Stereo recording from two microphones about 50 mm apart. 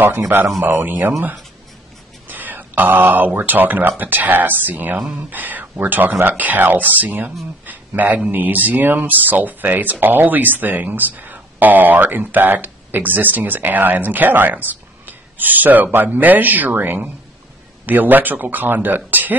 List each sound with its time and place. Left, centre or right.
0.3 s speech: right
2.2 s speech: right